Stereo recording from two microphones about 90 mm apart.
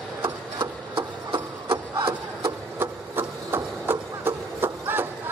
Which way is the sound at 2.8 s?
25° right (ahead or behind).